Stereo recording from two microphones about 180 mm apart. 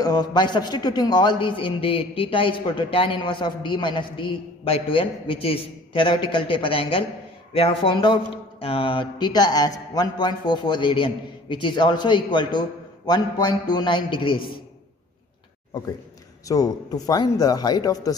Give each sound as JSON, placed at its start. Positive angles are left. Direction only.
{"t": 0.0, "sound": "a man's voice", "side_deg": 20}
{"t": 16.4, "sound": "a man's voice", "side_deg": 20}